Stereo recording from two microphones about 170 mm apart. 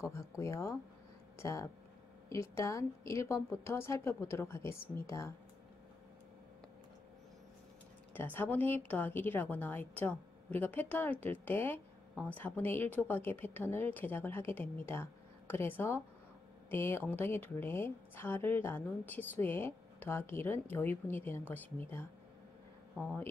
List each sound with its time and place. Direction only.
0.0 s a woman's voice: 20° left (ahead or behind)
8.1 s a woman's voice: 10° left (ahead or behind)